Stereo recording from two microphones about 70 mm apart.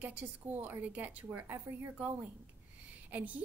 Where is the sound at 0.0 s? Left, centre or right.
Right.